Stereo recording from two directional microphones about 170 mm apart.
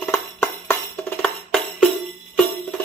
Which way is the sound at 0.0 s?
15° left (ahead or behind).